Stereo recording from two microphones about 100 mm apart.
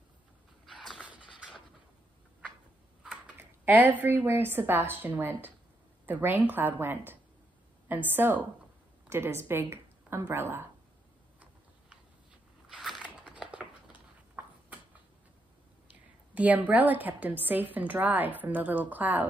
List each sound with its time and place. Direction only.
0.8 s music: 10° right (ahead or behind)
3.3 s speech: 20° right (ahead or behind)
12.6 s a sound: centre (ahead or behind)
13.3 s scissors: 10° right (ahead or behind)
16.3 s a woman's voice: 15° right (ahead or behind)